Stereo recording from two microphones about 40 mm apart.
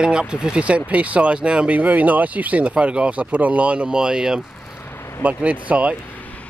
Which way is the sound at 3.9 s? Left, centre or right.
Centre.